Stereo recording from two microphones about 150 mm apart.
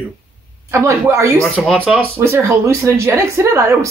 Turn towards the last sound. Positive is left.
turn(degrees=-20)  # may be behind; listen again after turning